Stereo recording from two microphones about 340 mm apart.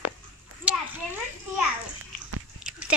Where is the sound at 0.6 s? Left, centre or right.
Centre.